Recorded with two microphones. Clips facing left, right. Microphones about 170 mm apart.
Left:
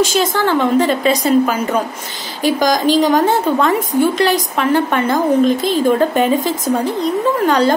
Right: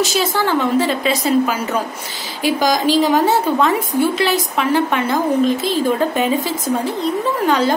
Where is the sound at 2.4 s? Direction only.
45° left (ahead or behind).